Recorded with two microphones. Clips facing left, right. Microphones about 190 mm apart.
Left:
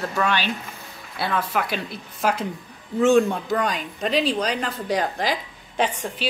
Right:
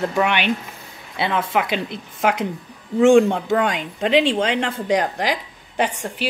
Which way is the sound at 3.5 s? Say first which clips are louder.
Right 4 dB; 90° right.